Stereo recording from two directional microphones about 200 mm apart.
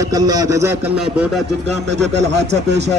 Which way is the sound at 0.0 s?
20° right (ahead or behind).